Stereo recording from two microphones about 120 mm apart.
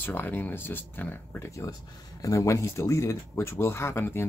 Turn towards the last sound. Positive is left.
turn(degrees=20)  # may be behind; listen again after turning